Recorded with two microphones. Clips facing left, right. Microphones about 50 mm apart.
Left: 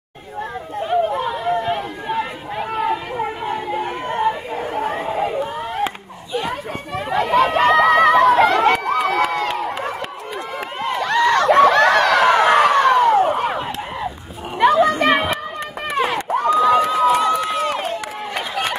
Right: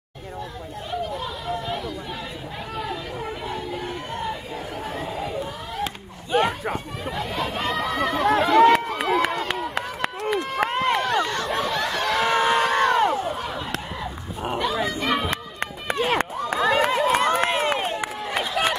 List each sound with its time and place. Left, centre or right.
0.7 s chatter: left
7.1 s chatter: left
8.8 s run: left
9.8 s run: right
11.0 s a sound: left
14.6 s children playing: left
16.5 s run: right
17.6 s run: right